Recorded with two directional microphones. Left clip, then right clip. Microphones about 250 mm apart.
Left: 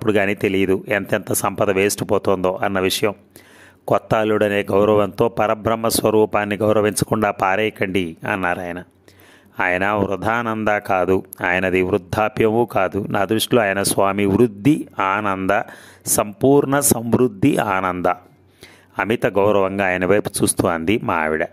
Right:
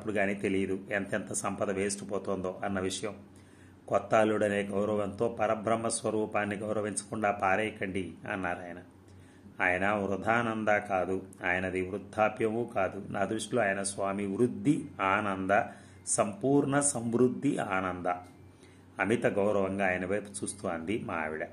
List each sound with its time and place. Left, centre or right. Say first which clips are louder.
0.0 s speech: left 13 dB; left